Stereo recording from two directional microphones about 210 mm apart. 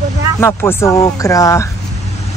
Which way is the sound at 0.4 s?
10° left (ahead or behind).